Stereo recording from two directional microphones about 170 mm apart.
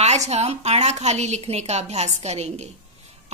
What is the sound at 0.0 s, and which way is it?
A woman's voice, 40° right (ahead or behind).